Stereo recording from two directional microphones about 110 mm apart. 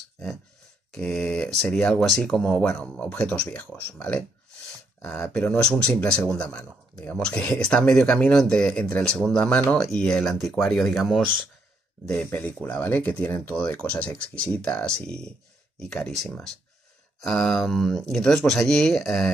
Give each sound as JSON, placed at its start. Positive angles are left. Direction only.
{"t": 0.9, "sound": "speech", "side_deg": 10}
{"t": 12.1, "sound": "speech", "side_deg": 20}